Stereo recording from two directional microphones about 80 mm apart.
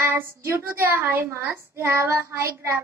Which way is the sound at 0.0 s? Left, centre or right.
Right.